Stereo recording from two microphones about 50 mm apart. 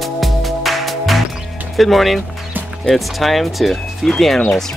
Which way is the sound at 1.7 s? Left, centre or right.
Centre.